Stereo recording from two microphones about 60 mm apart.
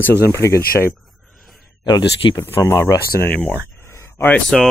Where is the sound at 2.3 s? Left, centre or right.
Left.